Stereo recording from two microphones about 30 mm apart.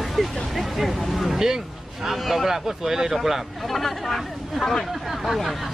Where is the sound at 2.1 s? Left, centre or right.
Centre.